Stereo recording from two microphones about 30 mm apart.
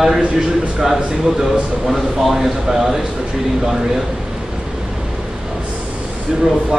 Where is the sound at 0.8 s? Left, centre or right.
Centre.